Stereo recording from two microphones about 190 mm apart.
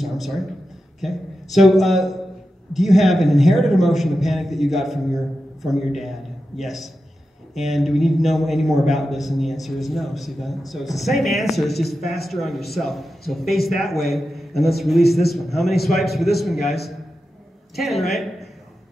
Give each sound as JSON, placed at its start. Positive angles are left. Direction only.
{"t": 0.0, "sound": "a sound", "side_deg": 0}
{"t": 1.0, "sound": "a man's voice", "side_deg": 0}
{"t": 17.7, "sound": "a man's voice", "side_deg": 0}